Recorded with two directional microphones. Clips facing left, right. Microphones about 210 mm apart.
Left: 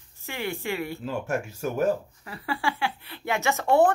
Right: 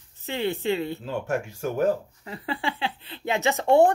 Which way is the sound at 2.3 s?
20° right (ahead or behind).